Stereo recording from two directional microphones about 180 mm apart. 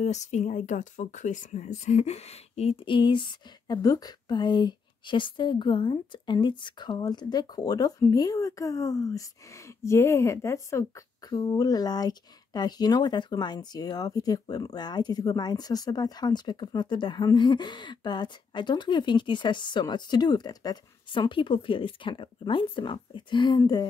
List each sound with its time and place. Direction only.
0.0 s speech: 40° left (ahead or behind); by 23.9 s 25° left (ahead or behind)